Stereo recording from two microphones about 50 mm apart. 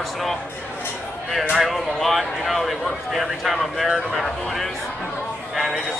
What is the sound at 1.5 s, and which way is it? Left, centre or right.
A man's voice, centre.